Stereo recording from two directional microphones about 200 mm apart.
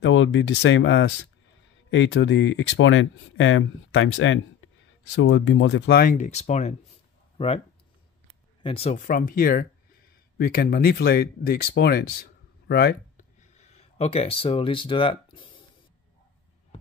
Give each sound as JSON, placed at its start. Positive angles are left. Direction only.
{"t": 0.0, "sound": "speech", "side_deg": 70}
{"t": 6.1, "sound": "speech", "side_deg": 35}
{"t": 8.6, "sound": "speech", "side_deg": 30}
{"t": 13.4, "sound": "speech", "side_deg": 35}